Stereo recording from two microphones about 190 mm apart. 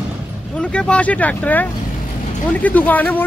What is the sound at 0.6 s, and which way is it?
Speech, 5° left (ahead or behind).